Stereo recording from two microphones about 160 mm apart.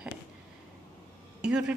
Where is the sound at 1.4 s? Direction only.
5° right (ahead or behind).